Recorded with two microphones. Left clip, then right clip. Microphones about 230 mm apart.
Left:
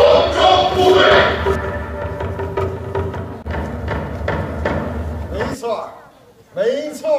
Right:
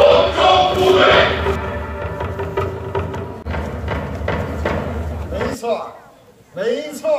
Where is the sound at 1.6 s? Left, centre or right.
Centre.